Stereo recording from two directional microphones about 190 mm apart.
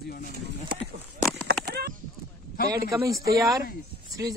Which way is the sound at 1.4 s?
55° right (ahead or behind).